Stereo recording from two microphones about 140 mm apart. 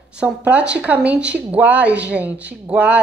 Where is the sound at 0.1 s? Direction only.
10° right (ahead or behind).